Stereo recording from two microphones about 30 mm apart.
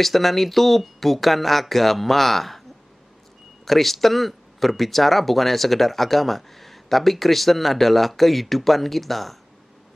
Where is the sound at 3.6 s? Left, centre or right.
Centre.